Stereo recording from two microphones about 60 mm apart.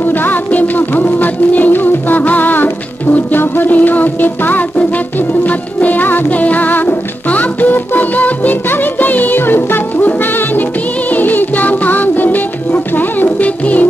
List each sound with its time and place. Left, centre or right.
0.0 s music: left